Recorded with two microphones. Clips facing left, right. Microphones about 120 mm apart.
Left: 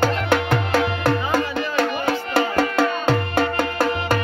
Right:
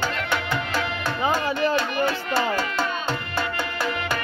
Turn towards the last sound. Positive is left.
turn(degrees=50)  # may be behind; listen again after turning